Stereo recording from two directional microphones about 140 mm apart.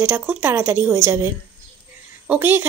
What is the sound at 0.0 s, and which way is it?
Speech, 15° right (ahead or behind).